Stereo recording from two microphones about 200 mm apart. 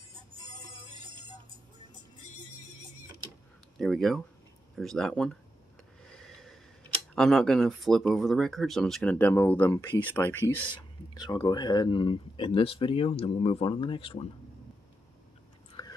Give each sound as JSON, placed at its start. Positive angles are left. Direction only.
{"t": 3.7, "sound": "speech", "side_deg": 0}
{"t": 6.0, "sound": "snort", "side_deg": 5}
{"t": 7.2, "sound": "speech", "side_deg": 0}
{"t": 11.1, "sound": "speech", "side_deg": 25}
{"t": 15.8, "sound": "a sound", "side_deg": 20}